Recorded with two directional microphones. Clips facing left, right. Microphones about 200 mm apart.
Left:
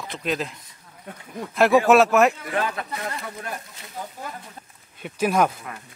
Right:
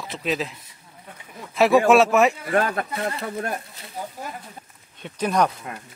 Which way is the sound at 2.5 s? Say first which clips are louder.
Right 4 dB; 50° right (ahead or behind).